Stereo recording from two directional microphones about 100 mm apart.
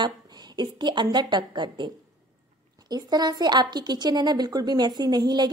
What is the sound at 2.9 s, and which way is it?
Speech, 45° right (ahead or behind).